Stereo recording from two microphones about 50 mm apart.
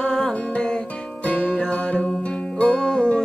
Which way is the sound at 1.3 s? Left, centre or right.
Left.